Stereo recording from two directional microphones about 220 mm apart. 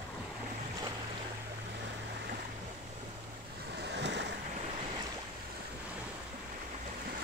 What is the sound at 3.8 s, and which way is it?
Waves, 50° right (ahead or behind).